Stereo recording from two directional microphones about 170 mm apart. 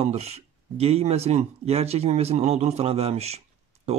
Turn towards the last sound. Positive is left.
turn(degrees=-40)  # may be behind; listen again after turning